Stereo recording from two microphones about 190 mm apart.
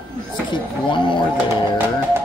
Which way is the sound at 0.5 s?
25° left (ahead or behind).